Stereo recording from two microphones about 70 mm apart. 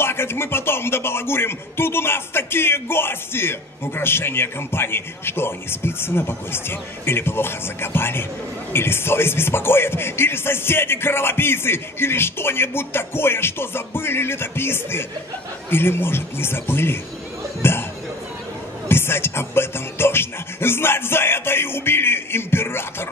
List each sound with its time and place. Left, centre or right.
0.0 s speech: left
18.9 s speech: left